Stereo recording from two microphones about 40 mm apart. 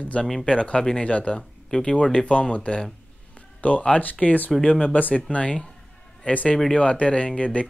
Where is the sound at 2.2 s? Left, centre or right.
Left.